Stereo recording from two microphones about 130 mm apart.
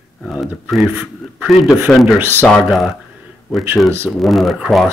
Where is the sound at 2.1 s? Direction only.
15° right (ahead or behind).